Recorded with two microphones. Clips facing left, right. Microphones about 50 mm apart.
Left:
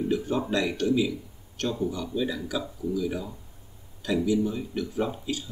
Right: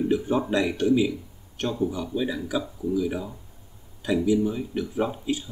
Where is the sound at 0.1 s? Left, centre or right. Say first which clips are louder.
Right 1 dB; centre.